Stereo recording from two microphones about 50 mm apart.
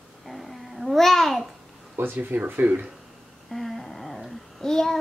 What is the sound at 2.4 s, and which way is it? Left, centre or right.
Speech, right.